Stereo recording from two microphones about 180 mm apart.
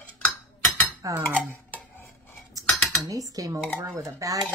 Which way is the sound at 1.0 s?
20° right (ahead or behind).